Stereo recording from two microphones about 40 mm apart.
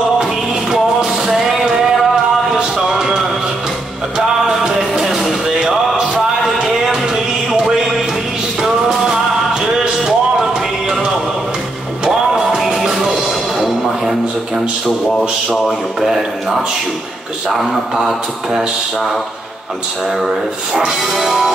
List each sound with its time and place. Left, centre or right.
0.9 s music: centre
2.6 s a sound: centre
4.4 s music: centre
8.5 s music: centre
12.0 s music: centre
17.5 s speech: centre
20.2 s speech: centre